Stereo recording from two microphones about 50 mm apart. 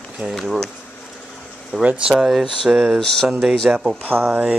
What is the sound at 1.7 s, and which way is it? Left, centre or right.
Speech, centre.